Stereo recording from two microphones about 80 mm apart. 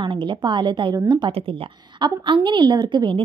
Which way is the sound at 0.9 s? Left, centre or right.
Right.